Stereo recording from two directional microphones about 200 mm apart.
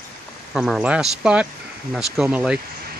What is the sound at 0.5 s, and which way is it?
Speech, centre (ahead or behind).